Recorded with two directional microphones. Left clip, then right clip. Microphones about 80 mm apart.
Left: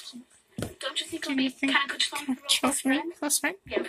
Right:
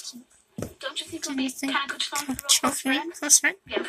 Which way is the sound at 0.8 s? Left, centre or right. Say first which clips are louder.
Left 1 dB; left.